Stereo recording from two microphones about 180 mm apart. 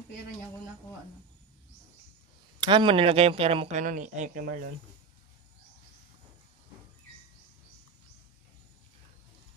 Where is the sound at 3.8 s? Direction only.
45° right (ahead or behind).